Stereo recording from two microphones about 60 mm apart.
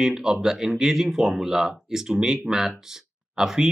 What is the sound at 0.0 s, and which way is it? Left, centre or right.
Speech, centre.